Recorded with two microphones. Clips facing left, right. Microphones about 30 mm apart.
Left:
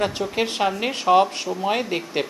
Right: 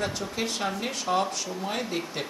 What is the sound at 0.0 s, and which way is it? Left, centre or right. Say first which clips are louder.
Speech: left 7 dB; left.